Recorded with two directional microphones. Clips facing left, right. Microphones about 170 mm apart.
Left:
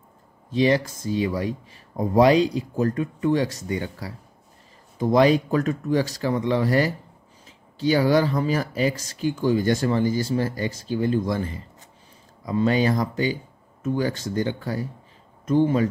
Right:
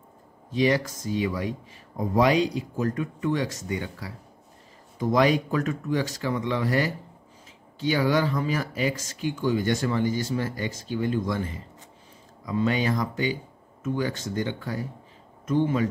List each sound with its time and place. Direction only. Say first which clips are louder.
0.5 s speech: left 3 dB; 30° left (ahead or behind)
12.4 s speech: left 4 dB; 35° left (ahead or behind)